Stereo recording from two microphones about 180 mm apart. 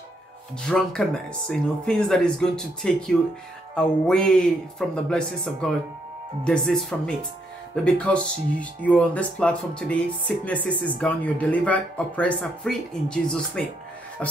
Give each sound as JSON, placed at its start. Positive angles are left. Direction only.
{"t": 0.7, "sound": "speech", "side_deg": 5}